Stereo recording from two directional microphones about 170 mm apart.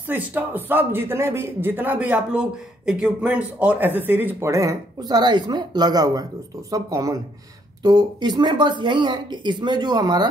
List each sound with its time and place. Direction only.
0.1 s speech: 10° right (ahead or behind)